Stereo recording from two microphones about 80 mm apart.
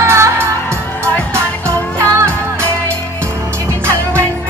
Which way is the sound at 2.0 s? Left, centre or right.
Right.